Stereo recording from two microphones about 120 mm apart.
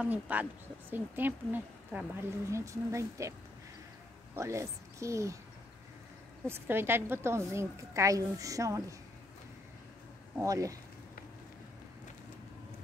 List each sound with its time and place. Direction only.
0.0 s speech: 15° right (ahead or behind)
2.5 s a woman's voice: 25° right (ahead or behind)
4.4 s a woman's voice: 25° right (ahead or behind)
6.4 s a woman's voice: 20° right (ahead or behind)
10.4 s a woman's voice: 30° right (ahead or behind)